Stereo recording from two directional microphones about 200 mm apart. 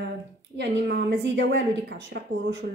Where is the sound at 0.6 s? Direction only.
55° right (ahead or behind).